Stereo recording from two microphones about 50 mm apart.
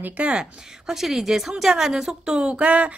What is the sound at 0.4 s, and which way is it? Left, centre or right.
Speech, centre.